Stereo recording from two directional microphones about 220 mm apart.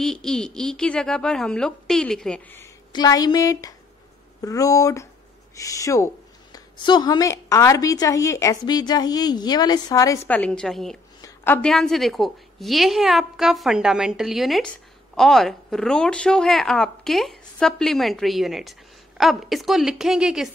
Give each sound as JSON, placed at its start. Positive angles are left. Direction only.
{"t": 0.0, "sound": "a woman's voice", "side_deg": 0}
{"t": 11.1, "sound": "a woman's voice", "side_deg": 10}